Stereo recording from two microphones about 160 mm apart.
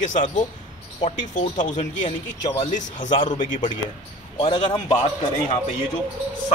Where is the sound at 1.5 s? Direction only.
50° left (ahead or behind).